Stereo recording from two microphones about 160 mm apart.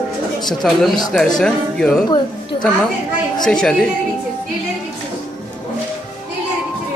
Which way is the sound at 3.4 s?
5° left (ahead or behind).